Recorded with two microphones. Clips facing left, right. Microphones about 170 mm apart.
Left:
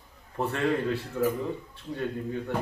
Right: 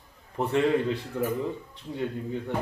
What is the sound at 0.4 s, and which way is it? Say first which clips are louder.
Speech: right 3 dB; 15° right (ahead or behind).